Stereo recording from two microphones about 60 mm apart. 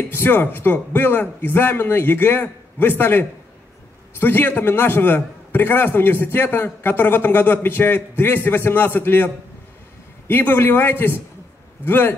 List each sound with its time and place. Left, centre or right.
0.1 s a man's voice: left